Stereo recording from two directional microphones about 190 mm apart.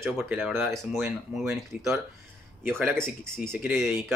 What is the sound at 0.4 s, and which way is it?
Speech, 10° right (ahead or behind).